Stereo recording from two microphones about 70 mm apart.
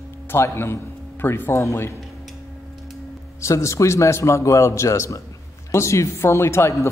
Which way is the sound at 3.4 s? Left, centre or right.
Left.